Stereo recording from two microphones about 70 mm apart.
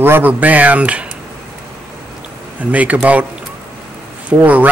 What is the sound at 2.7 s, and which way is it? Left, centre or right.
Speech, right.